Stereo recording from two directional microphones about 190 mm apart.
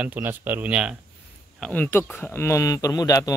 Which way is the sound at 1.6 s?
10° left (ahead or behind).